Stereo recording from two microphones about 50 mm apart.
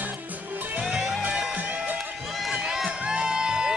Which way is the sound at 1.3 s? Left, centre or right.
Right.